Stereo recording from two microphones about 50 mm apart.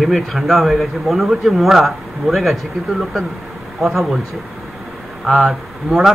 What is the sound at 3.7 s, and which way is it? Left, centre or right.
Speech, centre.